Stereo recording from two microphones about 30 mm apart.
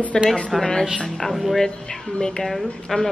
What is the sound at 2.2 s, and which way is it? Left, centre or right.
Speech, left.